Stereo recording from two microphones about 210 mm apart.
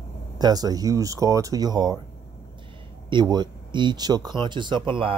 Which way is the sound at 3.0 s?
20° right (ahead or behind).